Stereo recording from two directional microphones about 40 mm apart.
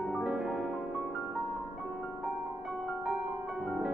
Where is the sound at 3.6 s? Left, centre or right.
Centre.